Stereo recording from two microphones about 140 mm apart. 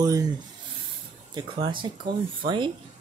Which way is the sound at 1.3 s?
35° right (ahead or behind).